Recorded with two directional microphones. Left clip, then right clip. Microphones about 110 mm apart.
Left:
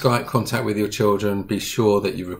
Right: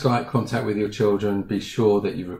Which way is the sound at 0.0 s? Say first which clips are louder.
Left 2 dB; 20° left (ahead or behind).